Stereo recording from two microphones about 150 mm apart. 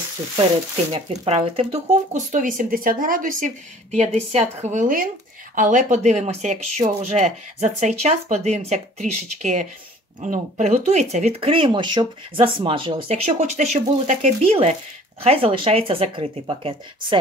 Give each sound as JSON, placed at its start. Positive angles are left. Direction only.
{"t": 0.9, "sound": "speech", "side_deg": -40}
{"t": 13.1, "sound": "speech", "side_deg": -45}